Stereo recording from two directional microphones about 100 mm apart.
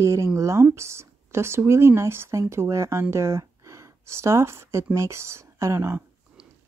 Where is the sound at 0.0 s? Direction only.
30° right (ahead or behind).